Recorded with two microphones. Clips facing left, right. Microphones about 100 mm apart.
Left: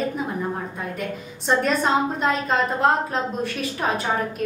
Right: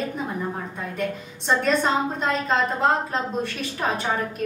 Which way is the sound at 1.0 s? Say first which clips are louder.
Right 2 dB; centre (ahead or behind).